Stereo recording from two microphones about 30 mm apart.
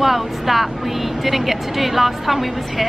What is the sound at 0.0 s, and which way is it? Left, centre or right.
A woman's voice, centre.